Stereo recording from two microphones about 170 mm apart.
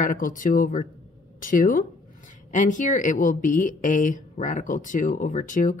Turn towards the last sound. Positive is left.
turn(degrees=50)  # may be behind; listen again after turning